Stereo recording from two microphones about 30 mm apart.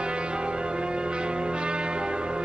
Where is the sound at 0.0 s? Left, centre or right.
Right.